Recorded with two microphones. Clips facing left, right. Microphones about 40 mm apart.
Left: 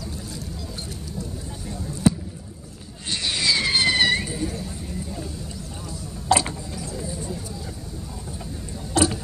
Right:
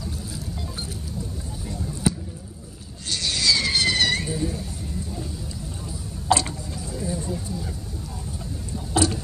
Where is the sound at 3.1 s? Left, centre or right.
Left.